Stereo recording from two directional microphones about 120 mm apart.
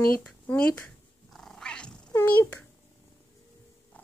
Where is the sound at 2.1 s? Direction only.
20° left (ahead or behind).